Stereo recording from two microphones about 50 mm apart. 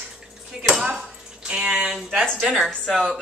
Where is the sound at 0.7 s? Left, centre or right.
Centre.